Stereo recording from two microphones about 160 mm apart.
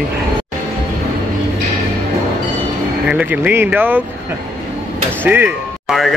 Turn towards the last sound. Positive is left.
turn(degrees=-5)  # may be behind; listen again after turning